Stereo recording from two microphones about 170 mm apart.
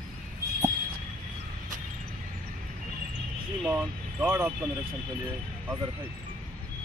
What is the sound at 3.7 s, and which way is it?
Speech, 10° right (ahead or behind).